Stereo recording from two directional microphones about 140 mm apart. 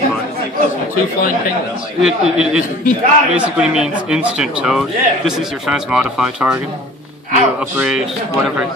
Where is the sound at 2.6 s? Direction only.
65° left (ahead or behind).